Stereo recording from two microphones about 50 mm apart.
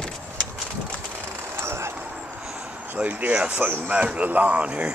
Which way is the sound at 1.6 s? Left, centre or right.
Right.